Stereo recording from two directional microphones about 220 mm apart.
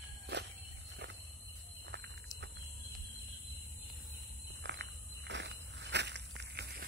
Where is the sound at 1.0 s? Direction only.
50° right (ahead or behind).